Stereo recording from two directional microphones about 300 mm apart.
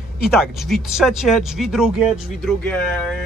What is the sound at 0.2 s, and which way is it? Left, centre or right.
Speech, centre.